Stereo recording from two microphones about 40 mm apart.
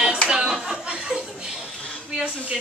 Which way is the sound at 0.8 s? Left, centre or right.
Right.